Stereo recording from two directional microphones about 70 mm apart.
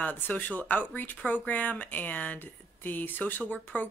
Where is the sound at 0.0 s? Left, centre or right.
Left.